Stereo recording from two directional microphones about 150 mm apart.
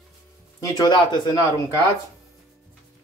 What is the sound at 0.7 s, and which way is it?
Speech, 30° left (ahead or behind).